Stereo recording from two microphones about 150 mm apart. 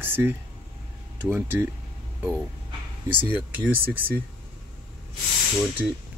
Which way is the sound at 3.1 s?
10° right (ahead or behind).